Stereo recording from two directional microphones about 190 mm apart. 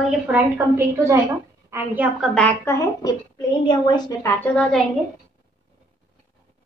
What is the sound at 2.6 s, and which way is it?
A woman's voice, 15° left (ahead or behind).